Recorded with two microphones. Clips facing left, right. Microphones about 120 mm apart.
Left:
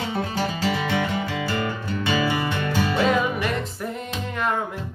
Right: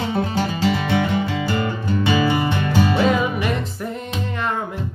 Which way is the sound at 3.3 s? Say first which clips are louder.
Right 3 dB; 5° right (ahead or behind).